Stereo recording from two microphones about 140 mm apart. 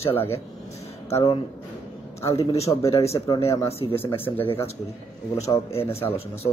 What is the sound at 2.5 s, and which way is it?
Speech, 45° left (ahead or behind).